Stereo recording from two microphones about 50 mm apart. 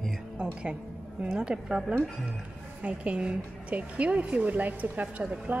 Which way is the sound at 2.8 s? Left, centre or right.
Right.